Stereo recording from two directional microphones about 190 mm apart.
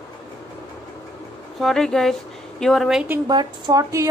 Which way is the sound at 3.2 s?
20° right (ahead or behind).